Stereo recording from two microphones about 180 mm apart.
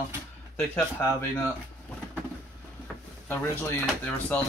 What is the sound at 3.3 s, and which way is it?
Speech, 10° left (ahead or behind).